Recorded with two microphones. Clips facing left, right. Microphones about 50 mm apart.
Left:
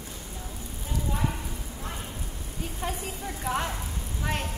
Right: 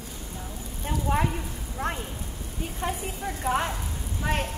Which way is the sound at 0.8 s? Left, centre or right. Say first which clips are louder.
Right 5 dB; right.